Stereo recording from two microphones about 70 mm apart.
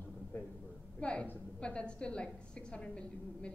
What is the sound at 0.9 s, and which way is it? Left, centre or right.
A woman's voice, centre.